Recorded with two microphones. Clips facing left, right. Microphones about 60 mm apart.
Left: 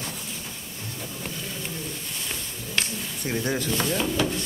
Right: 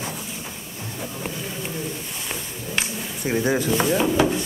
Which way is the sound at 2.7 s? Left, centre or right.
Centre.